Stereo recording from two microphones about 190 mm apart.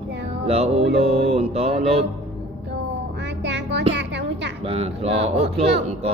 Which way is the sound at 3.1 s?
65° right (ahead or behind).